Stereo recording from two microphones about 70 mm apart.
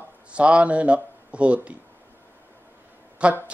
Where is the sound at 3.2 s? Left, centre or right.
Centre.